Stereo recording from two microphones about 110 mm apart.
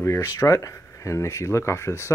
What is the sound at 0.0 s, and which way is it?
Speech, 25° left (ahead or behind).